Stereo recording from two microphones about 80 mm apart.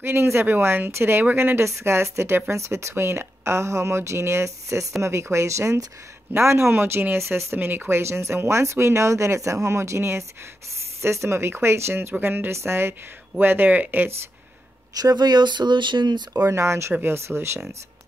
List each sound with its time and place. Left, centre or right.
0.0 s speech: right
15.0 s speech: right
16.4 s speech: right